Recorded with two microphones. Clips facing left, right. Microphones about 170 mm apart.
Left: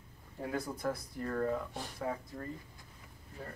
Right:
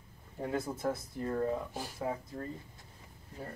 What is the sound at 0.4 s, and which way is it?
Speech, 25° right (ahead or behind).